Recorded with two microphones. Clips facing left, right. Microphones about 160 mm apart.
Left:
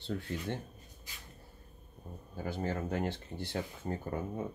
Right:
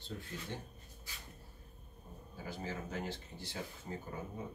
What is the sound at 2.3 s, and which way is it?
Speech, 55° left (ahead or behind).